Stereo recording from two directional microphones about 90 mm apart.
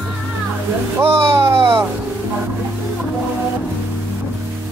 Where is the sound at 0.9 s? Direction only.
30° right (ahead or behind).